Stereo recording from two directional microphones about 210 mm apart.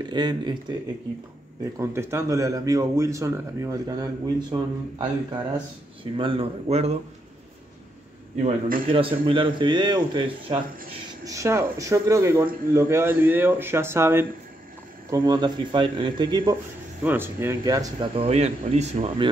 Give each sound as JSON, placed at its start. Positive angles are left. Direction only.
{"t": 0.0, "sound": "speech", "side_deg": -20}
{"t": 8.6, "sound": "a man's voice", "side_deg": -40}
{"t": 8.9, "sound": "speech", "side_deg": -25}
{"t": 11.2, "sound": "speech", "side_deg": -15}
{"t": 17.0, "sound": "speech", "side_deg": -10}